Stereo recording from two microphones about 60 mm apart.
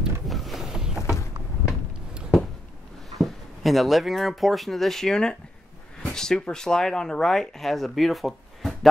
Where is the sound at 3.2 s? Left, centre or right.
Centre.